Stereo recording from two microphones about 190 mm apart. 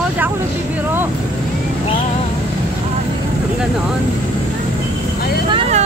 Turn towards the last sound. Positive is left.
turn(degrees=-35)  # may be behind; listen again after turning